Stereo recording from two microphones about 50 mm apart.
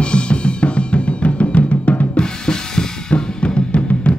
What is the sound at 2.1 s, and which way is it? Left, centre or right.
Drum, centre.